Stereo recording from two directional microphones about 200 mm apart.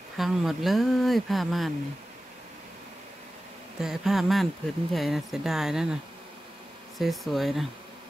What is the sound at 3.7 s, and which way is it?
Speech, centre (ahead or behind).